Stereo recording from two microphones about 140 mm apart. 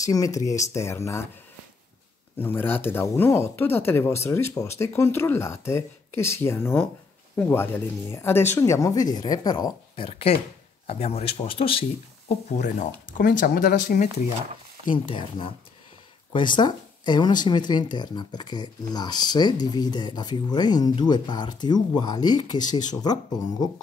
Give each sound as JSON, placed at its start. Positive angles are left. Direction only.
{"t": 0.0, "sound": "speech", "side_deg": 25}
{"t": 2.3, "sound": "speech", "side_deg": 15}
{"t": 10.0, "sound": "speech", "side_deg": 40}
{"t": 12.3, "sound": "speech", "side_deg": 55}
{"t": 13.2, "sound": "speech", "side_deg": 90}
{"t": 15.0, "sound": "speech", "side_deg": 40}